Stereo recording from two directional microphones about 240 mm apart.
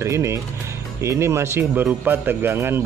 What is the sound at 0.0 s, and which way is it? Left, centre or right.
Speech, centre.